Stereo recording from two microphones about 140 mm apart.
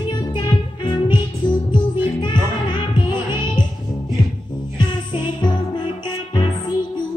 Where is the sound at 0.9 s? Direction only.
35° left (ahead or behind).